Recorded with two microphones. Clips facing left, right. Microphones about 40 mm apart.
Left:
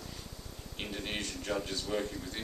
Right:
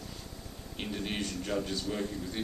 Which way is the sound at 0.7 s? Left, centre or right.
Centre.